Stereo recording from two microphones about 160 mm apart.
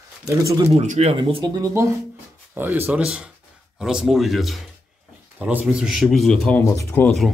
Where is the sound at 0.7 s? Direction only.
40° right (ahead or behind).